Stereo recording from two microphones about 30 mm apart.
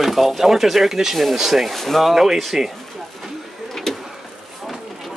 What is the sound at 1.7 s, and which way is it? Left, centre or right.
Speech, centre.